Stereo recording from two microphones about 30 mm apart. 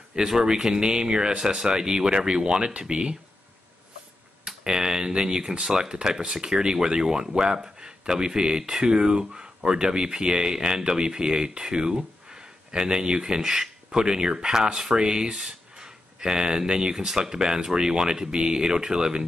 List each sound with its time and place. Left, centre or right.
0.4 s speech: right
4.5 s speech: right